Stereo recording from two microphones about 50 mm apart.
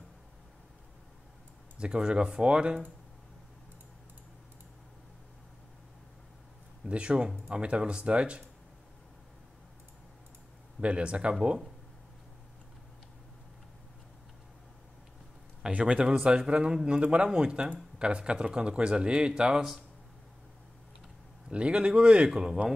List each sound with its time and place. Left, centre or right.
1.8 s speech: centre
6.9 s a man's voice: right
10.8 s a man's voice: right
15.8 s a man's voice: right
21.5 s a man's voice: right